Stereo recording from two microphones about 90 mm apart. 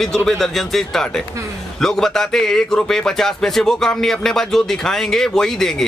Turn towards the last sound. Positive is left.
turn(degrees=5)  # may be behind; listen again after turning